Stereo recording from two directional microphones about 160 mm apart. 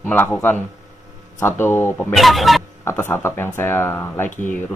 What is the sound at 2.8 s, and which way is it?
Speech, 15° left (ahead or behind).